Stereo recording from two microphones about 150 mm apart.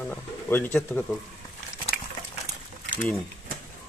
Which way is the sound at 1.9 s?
75° left (ahead or behind).